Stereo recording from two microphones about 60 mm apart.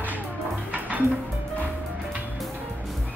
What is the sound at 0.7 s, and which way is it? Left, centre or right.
Music, right.